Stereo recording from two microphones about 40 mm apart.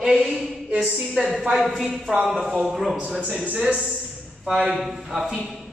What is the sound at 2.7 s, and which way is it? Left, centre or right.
Speech, centre.